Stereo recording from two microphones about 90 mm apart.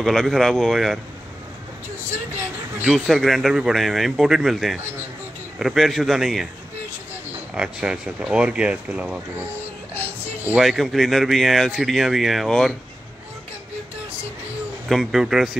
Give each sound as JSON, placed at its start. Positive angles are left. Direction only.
{"t": 0.0, "sound": "speech", "side_deg": 0}
{"t": 2.3, "sound": "speech", "side_deg": -20}
{"t": 3.1, "sound": "speech", "side_deg": 0}
{"t": 7.5, "sound": "speech", "side_deg": -10}
{"t": 10.6, "sound": "speech", "side_deg": 0}
{"t": 14.9, "sound": "speech", "side_deg": 0}